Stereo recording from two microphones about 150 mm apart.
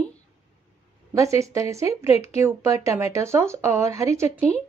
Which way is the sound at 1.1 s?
20° right (ahead or behind).